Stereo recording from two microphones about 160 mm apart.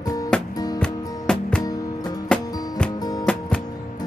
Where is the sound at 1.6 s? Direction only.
25° left (ahead or behind).